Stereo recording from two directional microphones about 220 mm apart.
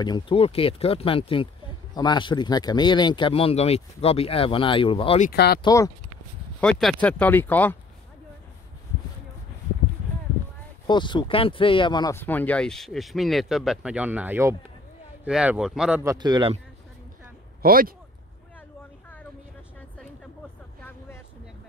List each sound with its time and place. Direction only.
0.0 s speech: 20° left (ahead or behind)
5.3 s speech: 45° left (ahead or behind)
5.6 s speech: 15° left (ahead or behind)
6.6 s speech: centre (ahead or behind)
10.9 s speech: 20° left (ahead or behind); by 16.5 s 20° right (ahead or behind)
17.6 s speech: 40° right (ahead or behind)